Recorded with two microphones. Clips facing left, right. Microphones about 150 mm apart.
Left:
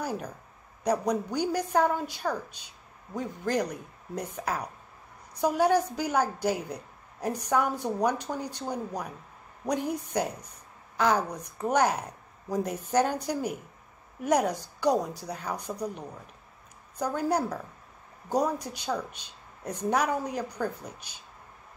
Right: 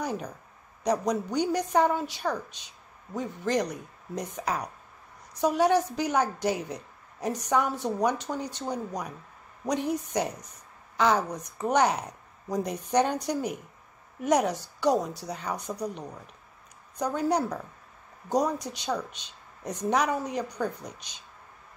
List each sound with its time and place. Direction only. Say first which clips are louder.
0.0 s a woman's voice: right 1 dB; 5° left (ahead or behind)
11.2 s a woman's voice: right 2 dB; 10° right (ahead or behind)
11.7 s a woman's voice: right 1 dB; 10° left (ahead or behind)
16.9 s a woman's voice: right 1 dB; 10° left (ahead or behind)
19.6 s speech: even; 10° right (ahead or behind)
19.9 s a woman's voice: right 1 dB; 10° left (ahead or behind)